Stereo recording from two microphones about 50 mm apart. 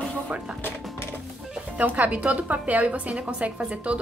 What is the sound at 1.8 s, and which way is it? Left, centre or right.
A woman's voice, right.